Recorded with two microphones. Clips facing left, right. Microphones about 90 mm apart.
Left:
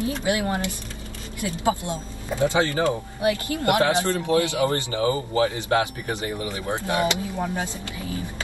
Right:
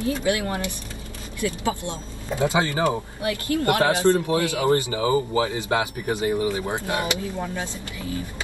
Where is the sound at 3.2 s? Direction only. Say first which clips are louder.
Left 1 dB; 20° left (ahead or behind).